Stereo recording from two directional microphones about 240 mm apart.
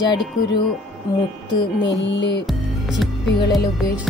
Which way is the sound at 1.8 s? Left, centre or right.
Left.